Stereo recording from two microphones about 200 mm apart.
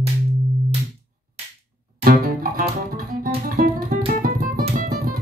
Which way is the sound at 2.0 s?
45° right (ahead or behind).